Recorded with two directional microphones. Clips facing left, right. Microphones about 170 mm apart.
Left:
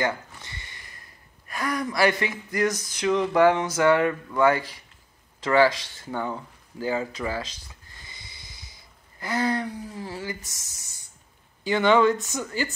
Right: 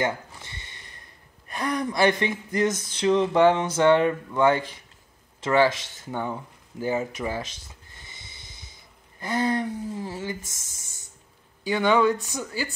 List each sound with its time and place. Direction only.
0.0 s a sound: 25° right (ahead or behind)
1.5 s speech: 25° right (ahead or behind)
10.4 s speech: 50° right (ahead or behind)
11.6 s speech: 10° right (ahead or behind)